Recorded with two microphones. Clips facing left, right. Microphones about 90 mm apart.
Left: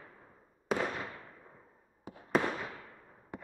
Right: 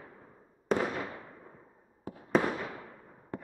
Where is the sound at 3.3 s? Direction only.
15° left (ahead or behind).